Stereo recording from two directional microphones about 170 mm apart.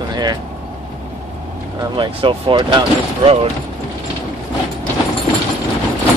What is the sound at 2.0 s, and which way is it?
Speech, 30° right (ahead or behind).